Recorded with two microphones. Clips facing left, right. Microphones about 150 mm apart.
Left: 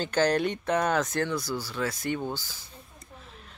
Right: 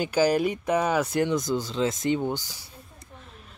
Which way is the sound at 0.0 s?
10° right (ahead or behind).